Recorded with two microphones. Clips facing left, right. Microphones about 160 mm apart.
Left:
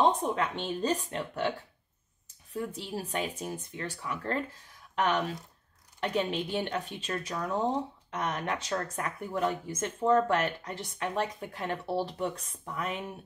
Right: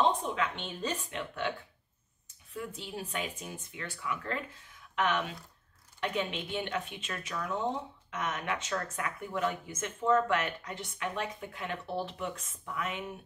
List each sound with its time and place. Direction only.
0.3 s speech: 35° left (ahead or behind)
2.5 s speech: 35° left (ahead or behind)